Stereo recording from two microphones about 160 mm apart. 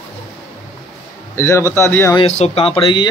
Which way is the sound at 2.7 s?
30° left (ahead or behind).